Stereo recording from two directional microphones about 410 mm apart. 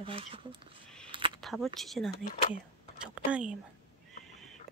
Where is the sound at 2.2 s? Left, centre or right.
Centre.